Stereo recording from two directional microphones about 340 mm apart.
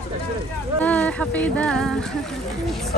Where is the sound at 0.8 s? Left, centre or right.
Centre.